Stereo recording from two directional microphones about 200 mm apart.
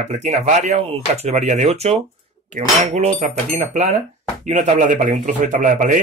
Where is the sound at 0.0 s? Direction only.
35° right (ahead or behind).